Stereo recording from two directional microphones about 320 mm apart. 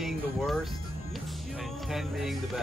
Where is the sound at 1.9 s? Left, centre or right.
Centre.